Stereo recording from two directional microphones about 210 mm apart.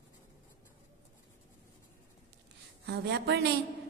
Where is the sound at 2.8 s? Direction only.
55° right (ahead or behind).